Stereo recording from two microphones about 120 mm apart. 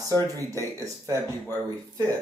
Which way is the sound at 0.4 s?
25° right (ahead or behind).